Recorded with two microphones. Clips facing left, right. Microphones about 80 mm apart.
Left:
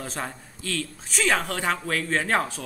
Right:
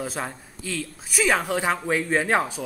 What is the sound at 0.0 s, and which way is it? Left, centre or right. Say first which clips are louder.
A man's voice: right 2 dB; centre.